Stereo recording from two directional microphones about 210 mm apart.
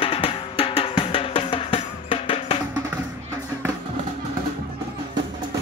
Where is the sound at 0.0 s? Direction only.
25° left (ahead or behind).